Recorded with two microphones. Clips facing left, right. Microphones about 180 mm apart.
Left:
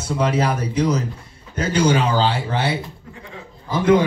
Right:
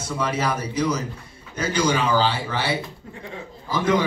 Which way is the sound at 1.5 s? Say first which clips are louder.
Left 4 dB; 60° left (ahead or behind).